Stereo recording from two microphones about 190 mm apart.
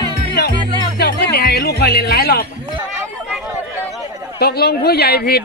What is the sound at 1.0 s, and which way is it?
Music, 55° left (ahead or behind).